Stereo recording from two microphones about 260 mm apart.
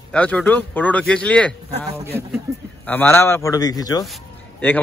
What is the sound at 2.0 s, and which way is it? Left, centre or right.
Speech, centre.